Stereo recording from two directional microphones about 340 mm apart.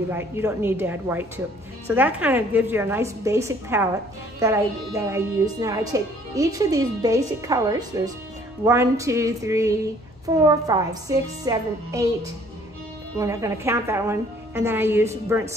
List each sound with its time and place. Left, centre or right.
0.1 s a woman's voice: centre
13.2 s a woman's voice: centre